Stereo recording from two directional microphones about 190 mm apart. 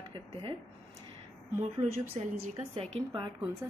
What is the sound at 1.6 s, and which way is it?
Speech, 35° right (ahead or behind).